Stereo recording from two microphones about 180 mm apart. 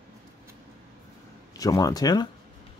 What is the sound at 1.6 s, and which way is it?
Speech, 20° left (ahead or behind).